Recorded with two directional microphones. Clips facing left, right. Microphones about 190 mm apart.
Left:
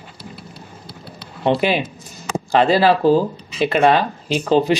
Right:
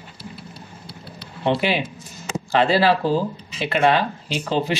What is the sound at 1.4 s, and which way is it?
Speech, 45° left (ahead or behind).